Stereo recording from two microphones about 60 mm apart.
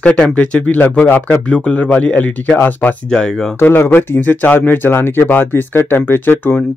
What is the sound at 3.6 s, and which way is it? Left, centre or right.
Speech, left.